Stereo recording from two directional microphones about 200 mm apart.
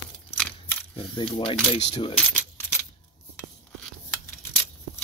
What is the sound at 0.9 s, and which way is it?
Speech, 25° left (ahead or behind).